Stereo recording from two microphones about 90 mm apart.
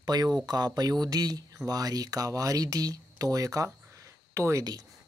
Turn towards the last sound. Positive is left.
turn(degrees=-30)  # may be behind; listen again after turning